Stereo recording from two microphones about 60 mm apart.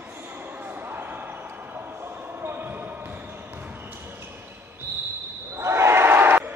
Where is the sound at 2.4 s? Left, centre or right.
Right.